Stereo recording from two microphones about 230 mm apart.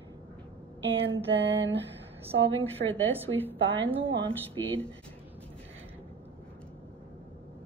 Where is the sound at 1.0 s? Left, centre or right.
Right.